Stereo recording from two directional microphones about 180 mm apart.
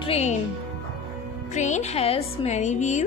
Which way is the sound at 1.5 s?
40° left (ahead or behind).